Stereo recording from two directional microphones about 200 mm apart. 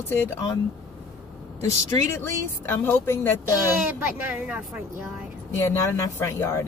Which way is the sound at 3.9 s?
5° right (ahead or behind).